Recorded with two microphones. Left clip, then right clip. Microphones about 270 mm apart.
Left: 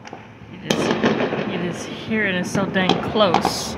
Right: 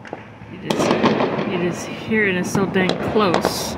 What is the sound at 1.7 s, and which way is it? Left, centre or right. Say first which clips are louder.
Speech: right 3 dB; centre.